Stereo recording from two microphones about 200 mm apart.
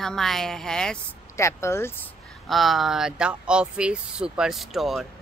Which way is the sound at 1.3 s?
15° left (ahead or behind).